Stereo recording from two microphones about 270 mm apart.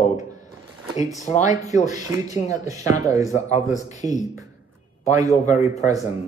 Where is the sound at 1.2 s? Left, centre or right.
Left.